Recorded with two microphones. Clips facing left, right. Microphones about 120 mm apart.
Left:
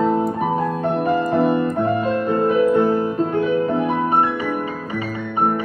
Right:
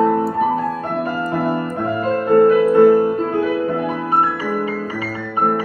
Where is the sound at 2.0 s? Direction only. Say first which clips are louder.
Right 5 dB; 45° right (ahead or behind).